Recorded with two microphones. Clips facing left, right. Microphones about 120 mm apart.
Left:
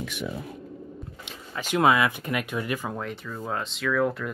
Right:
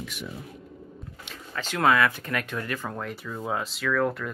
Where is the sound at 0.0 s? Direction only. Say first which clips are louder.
Left 5 dB; 65° left (ahead or behind).